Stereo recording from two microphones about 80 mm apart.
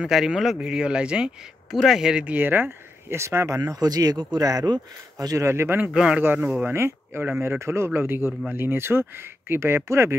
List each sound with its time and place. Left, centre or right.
0.0 s speech: centre; by 3.8 s right
3.8 s speech: right
4.5 s speech: right
5.5 s speech: right
5.9 s speech: centre
6.6 s speech: right